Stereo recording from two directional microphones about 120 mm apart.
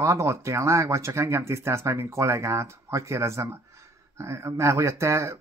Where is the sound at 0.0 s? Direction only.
25° right (ahead or behind).